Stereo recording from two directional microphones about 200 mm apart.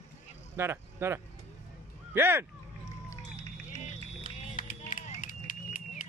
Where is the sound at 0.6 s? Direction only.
10° right (ahead or behind).